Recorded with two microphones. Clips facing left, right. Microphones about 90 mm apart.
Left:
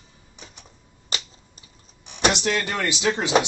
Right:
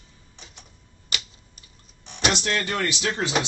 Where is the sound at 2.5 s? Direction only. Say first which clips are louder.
Left 1 dB; 20° left (ahead or behind).